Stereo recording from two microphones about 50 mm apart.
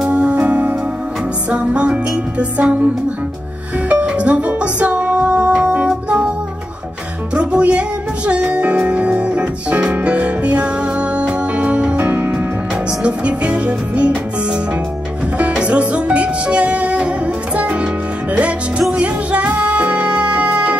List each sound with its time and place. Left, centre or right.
0.1 s music: right
3.9 s music: right
7.3 s music: right
13.0 s music: right
15.5 s music: right
18.3 s music: right